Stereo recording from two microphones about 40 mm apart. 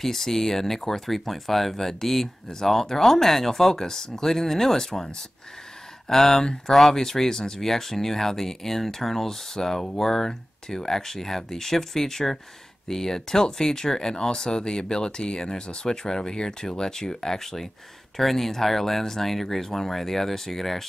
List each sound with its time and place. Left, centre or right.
0.0 s speech: centre